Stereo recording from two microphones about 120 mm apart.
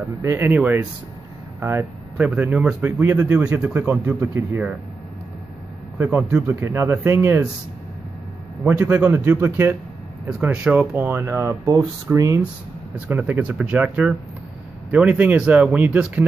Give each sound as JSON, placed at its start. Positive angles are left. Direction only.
{"t": 0.2, "sound": "speech", "side_deg": -20}
{"t": 5.9, "sound": "speech", "side_deg": -15}
{"t": 8.6, "sound": "speech", "side_deg": -15}
{"t": 12.9, "sound": "speech", "side_deg": -10}